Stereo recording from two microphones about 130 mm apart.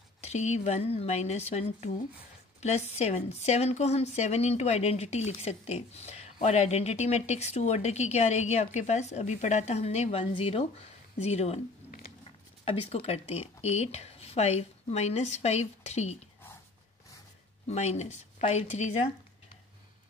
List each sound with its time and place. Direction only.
0.2 s speech: 60° left (ahead or behind)
12.6 s speech: 50° left (ahead or behind)
17.6 s speech: 60° left (ahead or behind)